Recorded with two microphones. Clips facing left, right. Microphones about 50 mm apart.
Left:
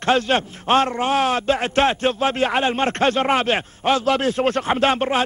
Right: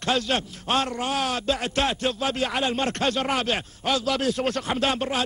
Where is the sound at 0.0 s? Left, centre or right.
Left.